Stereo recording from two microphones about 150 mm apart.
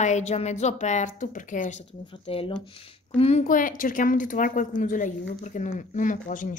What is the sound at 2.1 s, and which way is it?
A woman's voice, 35° left (ahead or behind).